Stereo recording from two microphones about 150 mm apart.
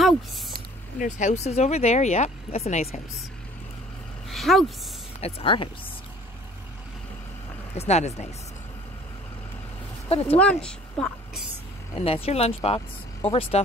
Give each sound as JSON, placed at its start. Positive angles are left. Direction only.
{"t": 0.9, "sound": "speech", "side_deg": 55}
{"t": 4.3, "sound": "speech", "side_deg": 0}
{"t": 5.2, "sound": "speech", "side_deg": 35}
{"t": 7.7, "sound": "speech", "side_deg": 45}
{"t": 10.0, "sound": "speech", "side_deg": 40}
{"t": 10.4, "sound": "a woman's voice", "side_deg": 5}
{"t": 12.0, "sound": "speech", "side_deg": 40}